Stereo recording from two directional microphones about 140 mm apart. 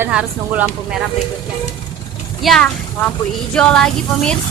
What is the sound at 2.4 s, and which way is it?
A woman's voice, 5° left (ahead or behind).